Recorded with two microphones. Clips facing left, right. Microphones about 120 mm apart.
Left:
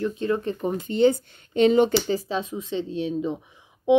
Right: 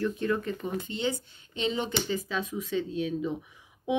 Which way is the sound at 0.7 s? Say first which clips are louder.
Left 15 dB; 50° left (ahead or behind).